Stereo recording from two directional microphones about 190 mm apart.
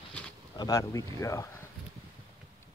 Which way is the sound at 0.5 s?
20° left (ahead or behind).